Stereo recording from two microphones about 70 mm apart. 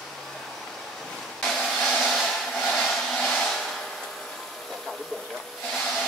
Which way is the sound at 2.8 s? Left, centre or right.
Centre.